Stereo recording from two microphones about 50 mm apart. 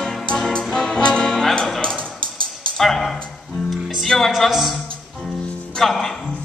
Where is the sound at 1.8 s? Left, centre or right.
Centre.